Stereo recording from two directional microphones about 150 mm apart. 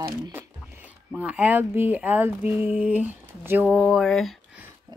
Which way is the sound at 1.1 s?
10° right (ahead or behind).